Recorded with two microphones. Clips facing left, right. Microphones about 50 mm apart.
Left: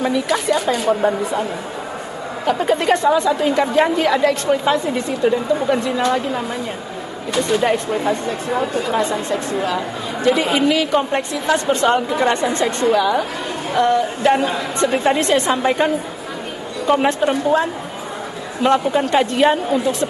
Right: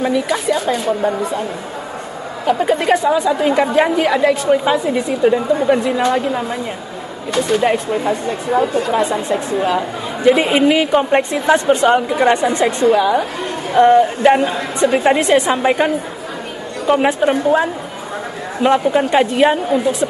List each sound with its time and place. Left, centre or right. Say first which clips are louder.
0.0 s speech: right 2 dB; centre
2.4 s a woman's voice: right 2 dB; centre
13.7 s a woman's voice: right 7 dB; right; by 20.1 s centre